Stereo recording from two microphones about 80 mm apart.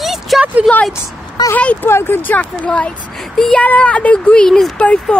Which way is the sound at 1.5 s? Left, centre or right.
Centre.